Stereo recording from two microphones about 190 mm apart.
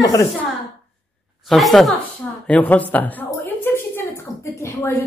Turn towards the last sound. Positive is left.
turn(degrees=15)  # may be behind; listen again after turning